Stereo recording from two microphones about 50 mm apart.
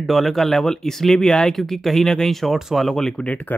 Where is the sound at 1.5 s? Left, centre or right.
Centre.